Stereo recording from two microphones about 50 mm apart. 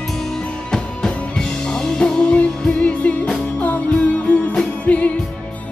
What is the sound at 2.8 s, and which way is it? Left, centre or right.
Music, left.